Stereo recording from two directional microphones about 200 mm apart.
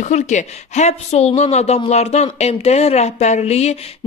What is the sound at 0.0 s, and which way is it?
A woman's voice, 35° left (ahead or behind).